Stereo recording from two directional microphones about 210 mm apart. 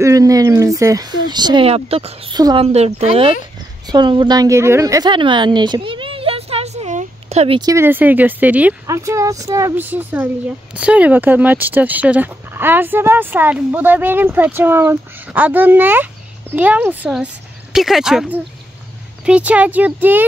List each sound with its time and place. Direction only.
0.0 s a woman's voice: 15° right (ahead or behind)
7.7 s speech: 10° right (ahead or behind)